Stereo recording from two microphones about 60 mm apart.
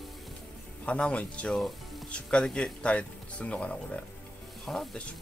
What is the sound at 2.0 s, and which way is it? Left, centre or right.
Music, centre.